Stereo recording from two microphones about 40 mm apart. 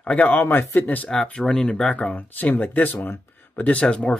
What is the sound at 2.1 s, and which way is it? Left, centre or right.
Speech, left.